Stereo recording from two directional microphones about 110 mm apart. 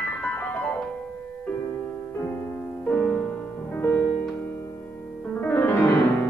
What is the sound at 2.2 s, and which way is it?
Music, 20° left (ahead or behind).